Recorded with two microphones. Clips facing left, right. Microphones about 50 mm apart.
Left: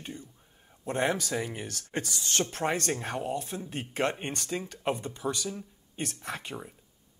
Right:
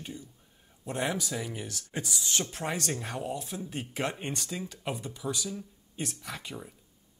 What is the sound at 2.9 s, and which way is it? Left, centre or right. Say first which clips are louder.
A man's voice: left 2 dB; left.